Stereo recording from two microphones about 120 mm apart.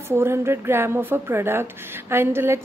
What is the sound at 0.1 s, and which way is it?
A woman's voice, 20° right (ahead or behind).